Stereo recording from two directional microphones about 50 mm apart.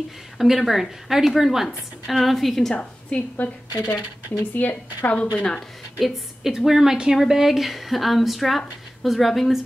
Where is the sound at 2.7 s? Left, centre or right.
Left.